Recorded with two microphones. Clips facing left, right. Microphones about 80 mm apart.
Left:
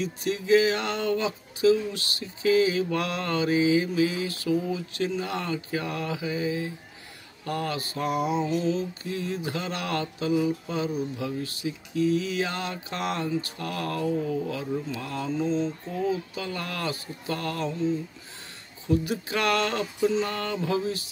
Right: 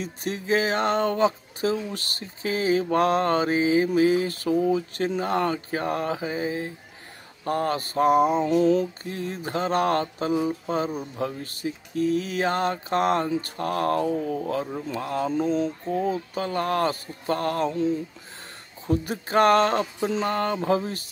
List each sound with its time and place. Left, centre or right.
0.0 s speech: right
9.0 s speech: right
15.3 s mantra: right
15.9 s speech: right
17.7 s mantra: right
18.9 s speech: right